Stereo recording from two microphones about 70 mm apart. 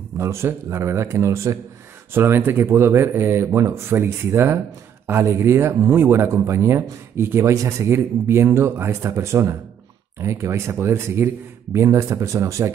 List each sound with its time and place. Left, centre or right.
0.2 s a man's voice: right
2.1 s a man's voice: right